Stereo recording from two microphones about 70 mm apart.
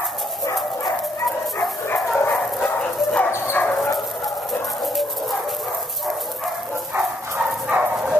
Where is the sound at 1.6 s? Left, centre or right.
Left.